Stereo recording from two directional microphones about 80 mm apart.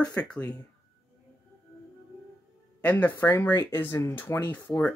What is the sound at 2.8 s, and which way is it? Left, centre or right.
Speech, centre.